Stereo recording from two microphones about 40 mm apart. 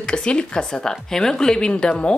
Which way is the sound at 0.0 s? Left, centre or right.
Left.